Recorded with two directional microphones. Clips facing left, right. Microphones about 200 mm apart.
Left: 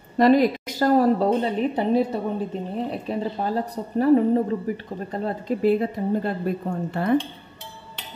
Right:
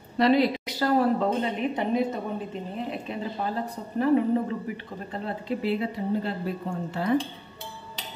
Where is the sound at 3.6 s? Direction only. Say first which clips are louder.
Left 5 dB; 40° left (ahead or behind).